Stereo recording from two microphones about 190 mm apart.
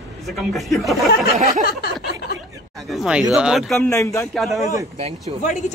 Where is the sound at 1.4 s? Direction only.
35° right (ahead or behind).